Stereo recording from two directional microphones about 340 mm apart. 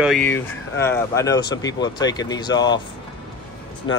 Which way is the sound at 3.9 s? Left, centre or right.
Left.